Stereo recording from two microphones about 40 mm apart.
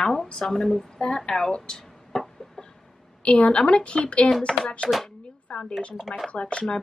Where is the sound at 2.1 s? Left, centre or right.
Centre.